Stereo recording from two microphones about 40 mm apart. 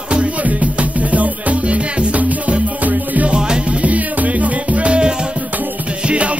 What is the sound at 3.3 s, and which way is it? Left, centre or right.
Music, right.